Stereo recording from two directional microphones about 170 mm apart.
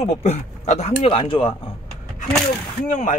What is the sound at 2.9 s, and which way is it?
Speech, 45° left (ahead or behind).